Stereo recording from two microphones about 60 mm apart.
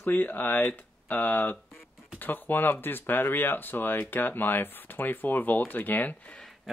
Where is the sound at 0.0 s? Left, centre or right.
Left.